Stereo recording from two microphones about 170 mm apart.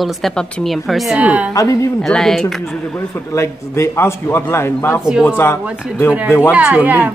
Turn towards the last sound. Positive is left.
turn(degrees=-10)  # may be behind; listen again after turning